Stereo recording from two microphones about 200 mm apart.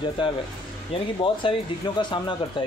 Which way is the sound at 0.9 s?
25° left (ahead or behind).